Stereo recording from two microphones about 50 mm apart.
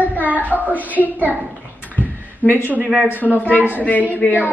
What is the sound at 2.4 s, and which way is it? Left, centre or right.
Speech, left.